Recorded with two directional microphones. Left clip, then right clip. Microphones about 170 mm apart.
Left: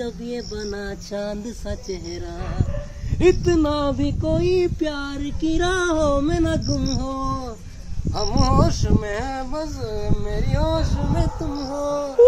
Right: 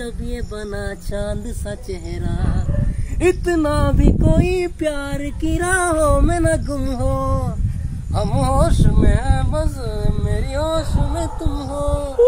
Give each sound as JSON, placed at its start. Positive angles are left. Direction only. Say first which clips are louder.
{"t": 0.0, "sound": "speech", "louder": "left 1 dB", "side_deg": 5}
{"t": 3.2, "sound": "a sound", "louder": "even", "side_deg": -10}
{"t": 8.2, "sound": "speech", "louder": "right 2 dB", "side_deg": 5}